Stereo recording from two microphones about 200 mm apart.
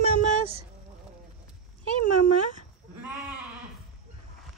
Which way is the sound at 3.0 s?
5° right (ahead or behind).